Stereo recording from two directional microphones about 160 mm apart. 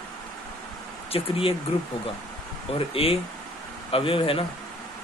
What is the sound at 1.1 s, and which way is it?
Speech, 35° left (ahead or behind).